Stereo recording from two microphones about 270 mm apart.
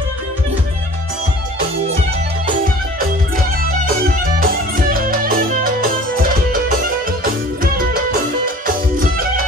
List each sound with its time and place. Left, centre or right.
2.6 s music: right
7.6 s music: right